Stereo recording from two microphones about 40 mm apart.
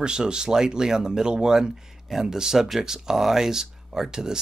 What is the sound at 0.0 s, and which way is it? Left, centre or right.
Speech, centre.